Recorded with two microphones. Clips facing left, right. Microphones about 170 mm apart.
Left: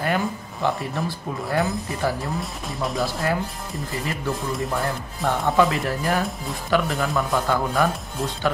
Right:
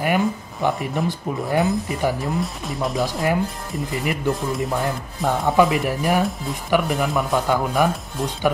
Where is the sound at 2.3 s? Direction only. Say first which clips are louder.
Right 4 dB; centre (ahead or behind).